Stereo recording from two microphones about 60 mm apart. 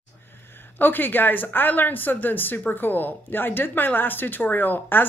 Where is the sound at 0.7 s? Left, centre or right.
Left.